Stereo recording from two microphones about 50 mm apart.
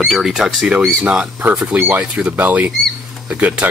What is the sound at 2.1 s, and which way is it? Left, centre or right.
Speech, centre.